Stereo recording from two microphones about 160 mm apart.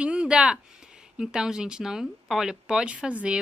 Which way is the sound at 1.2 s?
5° right (ahead or behind).